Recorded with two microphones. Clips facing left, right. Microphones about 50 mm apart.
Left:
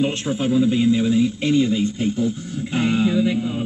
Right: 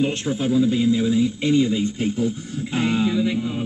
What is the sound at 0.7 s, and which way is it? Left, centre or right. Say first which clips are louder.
Speech: left 2 dB; left.